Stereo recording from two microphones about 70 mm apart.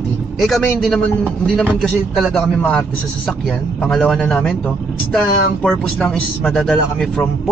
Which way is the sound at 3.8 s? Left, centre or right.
Centre.